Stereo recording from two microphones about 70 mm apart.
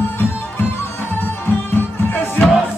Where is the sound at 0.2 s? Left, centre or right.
Left.